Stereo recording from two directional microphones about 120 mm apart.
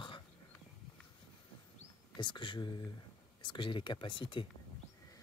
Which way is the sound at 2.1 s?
40° left (ahead or behind).